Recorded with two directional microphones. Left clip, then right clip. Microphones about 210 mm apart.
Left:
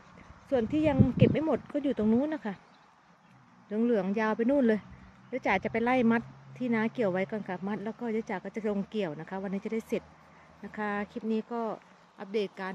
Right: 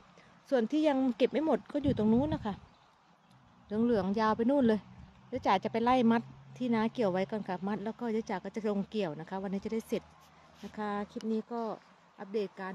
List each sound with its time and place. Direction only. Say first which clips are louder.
0.5 s speech: left 1 dB; 20° right (ahead or behind)
3.7 s speech: left 2 dB; 15° right (ahead or behind)